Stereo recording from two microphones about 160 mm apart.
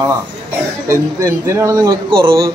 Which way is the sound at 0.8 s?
20° right (ahead or behind).